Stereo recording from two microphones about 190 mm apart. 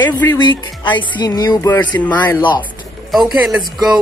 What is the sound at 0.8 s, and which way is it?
Speech, 25° left (ahead or behind).